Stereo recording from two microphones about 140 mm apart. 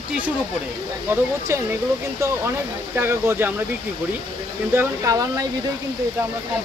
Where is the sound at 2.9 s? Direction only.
15° right (ahead or behind).